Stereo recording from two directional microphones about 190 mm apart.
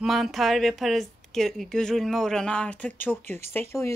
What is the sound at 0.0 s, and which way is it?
A woman's voice, centre (ahead or behind).